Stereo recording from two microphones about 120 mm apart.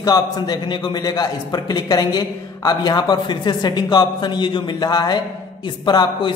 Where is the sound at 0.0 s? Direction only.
35° left (ahead or behind).